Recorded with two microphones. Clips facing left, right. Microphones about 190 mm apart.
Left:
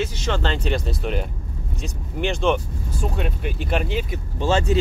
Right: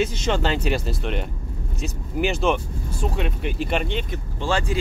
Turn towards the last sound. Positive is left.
turn(degrees=25)  # may be behind; listen again after turning